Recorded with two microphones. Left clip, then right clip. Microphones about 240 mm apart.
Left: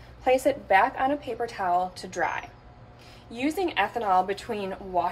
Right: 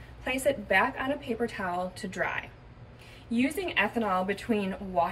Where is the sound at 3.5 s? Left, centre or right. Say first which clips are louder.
Left 5 dB; left.